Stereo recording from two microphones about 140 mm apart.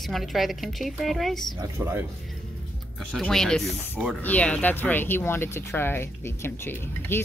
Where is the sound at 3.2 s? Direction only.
5° left (ahead or behind).